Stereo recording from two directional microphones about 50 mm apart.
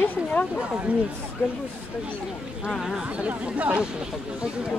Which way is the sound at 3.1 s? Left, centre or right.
Right.